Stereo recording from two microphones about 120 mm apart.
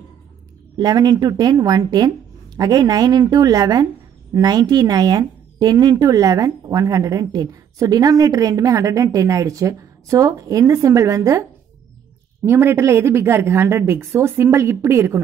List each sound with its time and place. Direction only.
0.7 s speech: 35° right (ahead or behind)
12.4 s speech: 20° right (ahead or behind)